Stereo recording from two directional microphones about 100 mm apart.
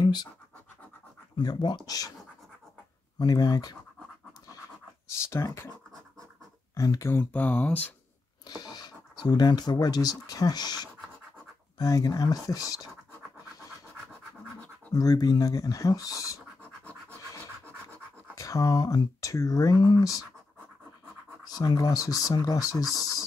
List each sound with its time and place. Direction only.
0.0 s scratch: 45° left (ahead or behind)
1.4 s speech: 45° left (ahead or behind)
3.2 s speech: 40° left (ahead or behind)
5.3 s speech: 30° left (ahead or behind)
6.7 s speech: 30° left (ahead or behind); by 7.9 s 15° left (ahead or behind)
8.5 s speech: 45° left (ahead or behind)
15.0 s speech: 40° left (ahead or behind)
18.3 s speech: 35° left (ahead or behind)
21.5 s speech: 40° left (ahead or behind)